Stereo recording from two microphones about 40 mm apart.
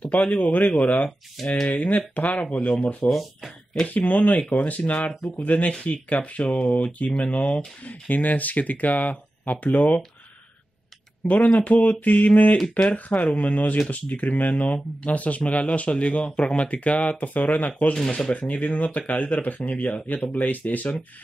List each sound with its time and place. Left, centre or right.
0.0 s speech: left
3.1 s speech: centre
3.8 s speech: left
6.4 s speech: left
6.7 s speech: left
11.2 s speech: left